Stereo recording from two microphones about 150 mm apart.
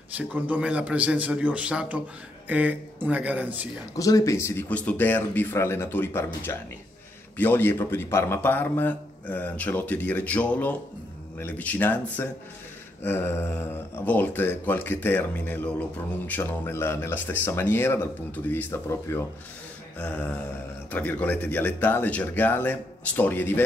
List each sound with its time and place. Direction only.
0.2 s a man's voice: 10° right (ahead or behind)
3.9 s a man's voice: 20° left (ahead or behind)